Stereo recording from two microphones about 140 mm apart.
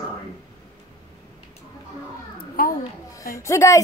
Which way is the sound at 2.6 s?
90° left.